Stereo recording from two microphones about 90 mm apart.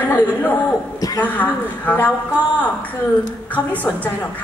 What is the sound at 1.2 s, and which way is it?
Speech, 20° left (ahead or behind).